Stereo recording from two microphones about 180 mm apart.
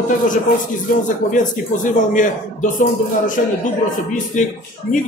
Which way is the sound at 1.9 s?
45° left (ahead or behind).